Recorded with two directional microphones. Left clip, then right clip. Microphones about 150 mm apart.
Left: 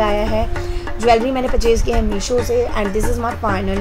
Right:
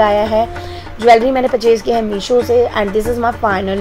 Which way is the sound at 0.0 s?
20° right (ahead or behind).